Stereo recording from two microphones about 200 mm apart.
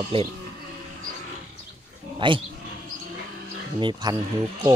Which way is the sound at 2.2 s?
25° right (ahead or behind).